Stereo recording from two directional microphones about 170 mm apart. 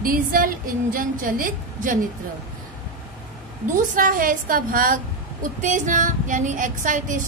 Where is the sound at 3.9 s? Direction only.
50° right (ahead or behind).